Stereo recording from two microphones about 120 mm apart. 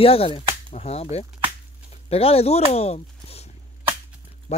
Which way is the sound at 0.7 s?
70° left (ahead or behind).